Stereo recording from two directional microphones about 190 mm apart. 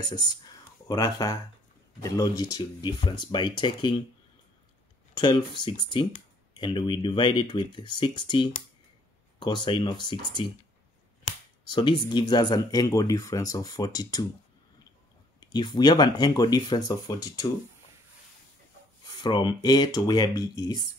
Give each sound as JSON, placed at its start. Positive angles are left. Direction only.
{"t": 0.0, "sound": "speech", "side_deg": 20}
{"t": 5.1, "sound": "speech", "side_deg": 25}
{"t": 11.6, "sound": "speech", "side_deg": 25}
{"t": 15.4, "sound": "speech", "side_deg": 20}
{"t": 19.2, "sound": "speech", "side_deg": 20}